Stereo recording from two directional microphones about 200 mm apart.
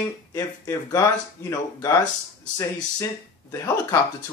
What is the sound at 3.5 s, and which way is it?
Speech, 15° left (ahead or behind).